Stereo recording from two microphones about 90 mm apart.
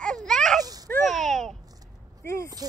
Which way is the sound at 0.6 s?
45° right (ahead or behind).